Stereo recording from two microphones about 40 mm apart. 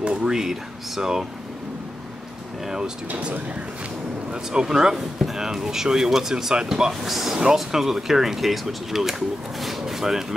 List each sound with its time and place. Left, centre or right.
0.0 s a sound: right
0.3 s speech: centre
2.6 s speech: centre
3.1 s speech: right
4.3 s speech: centre
6.9 s speech: centre